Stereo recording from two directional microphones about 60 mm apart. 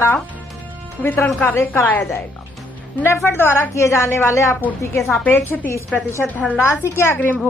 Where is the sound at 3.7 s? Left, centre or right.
Left.